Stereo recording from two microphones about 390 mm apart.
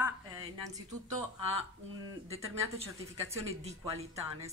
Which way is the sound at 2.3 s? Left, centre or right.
Centre.